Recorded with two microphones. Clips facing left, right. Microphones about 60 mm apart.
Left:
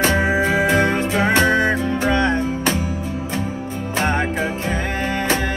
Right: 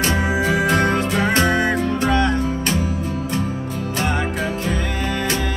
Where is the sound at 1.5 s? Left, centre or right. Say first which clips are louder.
Left 1 dB; left.